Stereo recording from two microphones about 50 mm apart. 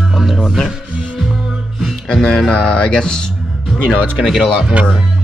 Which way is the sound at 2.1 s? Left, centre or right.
Centre.